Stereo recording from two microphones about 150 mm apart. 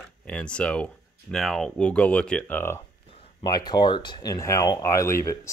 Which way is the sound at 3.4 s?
30° left (ahead or behind).